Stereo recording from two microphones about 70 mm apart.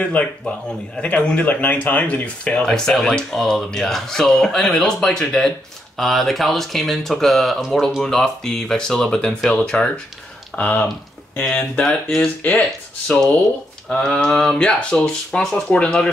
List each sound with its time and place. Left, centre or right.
0.0 s speech: centre
13.8 s speech: centre